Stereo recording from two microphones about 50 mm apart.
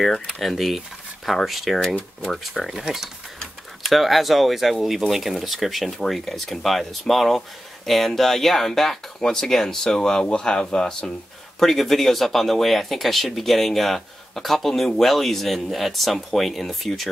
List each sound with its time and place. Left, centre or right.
0.4 s speech: centre
3.8 s speech: centre